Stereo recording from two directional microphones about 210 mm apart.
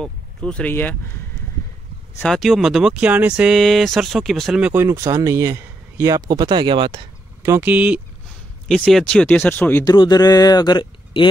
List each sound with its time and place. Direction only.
0.0 s speech: 5° left (ahead or behind)
2.1 s speech: centre (ahead or behind); by 7.0 s 25° right (ahead or behind)
7.4 s speech: 10° right (ahead or behind); by 11.2 s 20° left (ahead or behind)